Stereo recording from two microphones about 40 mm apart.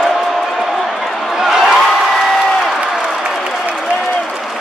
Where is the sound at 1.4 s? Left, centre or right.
Centre.